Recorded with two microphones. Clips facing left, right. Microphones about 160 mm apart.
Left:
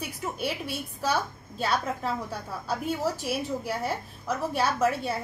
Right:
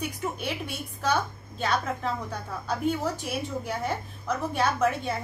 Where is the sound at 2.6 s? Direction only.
5° left (ahead or behind).